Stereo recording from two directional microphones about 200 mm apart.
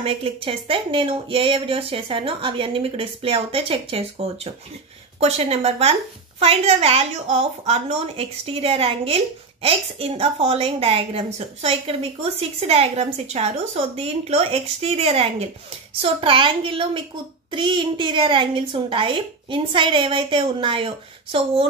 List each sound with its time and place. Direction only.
0.0 s a woman's voice: 25° right (ahead or behind)